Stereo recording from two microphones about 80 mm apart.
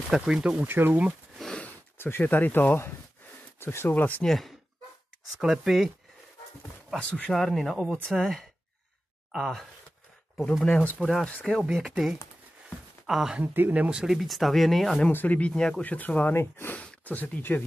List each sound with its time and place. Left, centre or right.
0.1 s speech: centre
0.6 s speech: right
1.6 s speech: left
4.2 s speech: centre
7.0 s speech: centre
7.3 s speech: centre
10.6 s speech: centre
11.0 s speech: centre
13.4 s speech: right
13.8 s speech: centre
15.0 s speech: left
16.3 s speech: left
16.7 s speech: centre